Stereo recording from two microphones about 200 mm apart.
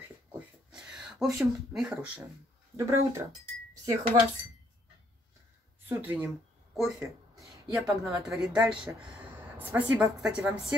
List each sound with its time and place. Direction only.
0.7 s speech: 5° right (ahead or behind)
2.8 s a woman's voice: 15° right (ahead or behind)
5.9 s a woman's voice: 15° right (ahead or behind)
6.7 s a woman's voice: centre (ahead or behind)